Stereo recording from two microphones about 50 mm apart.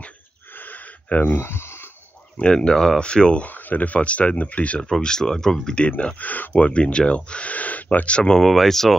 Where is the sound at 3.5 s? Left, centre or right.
Left.